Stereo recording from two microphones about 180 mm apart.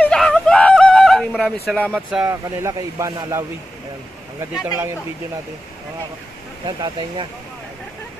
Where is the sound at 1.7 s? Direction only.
Centre (ahead or behind).